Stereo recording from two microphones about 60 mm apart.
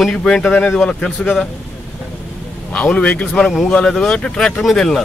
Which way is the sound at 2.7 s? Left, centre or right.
Centre.